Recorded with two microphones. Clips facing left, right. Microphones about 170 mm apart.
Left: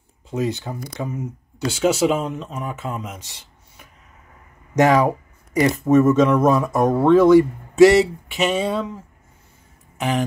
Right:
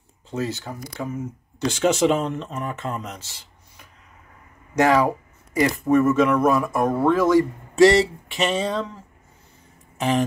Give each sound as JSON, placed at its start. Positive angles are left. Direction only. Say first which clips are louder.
{"t": 0.3, "sound": "speech", "louder": "left 4 dB", "side_deg": 15}
{"t": 1.6, "sound": "speech", "louder": "left 1 dB", "side_deg": 5}
{"t": 3.2, "sound": "speech", "louder": "left 1 dB", "side_deg": 15}
{"t": 5.7, "sound": "speech", "louder": "left 4 dB", "side_deg": 20}
{"t": 7.7, "sound": "speech", "louder": "left 3 dB", "side_deg": 5}
{"t": 9.9, "sound": "a sound", "louder": "right 1 dB", "side_deg": 0}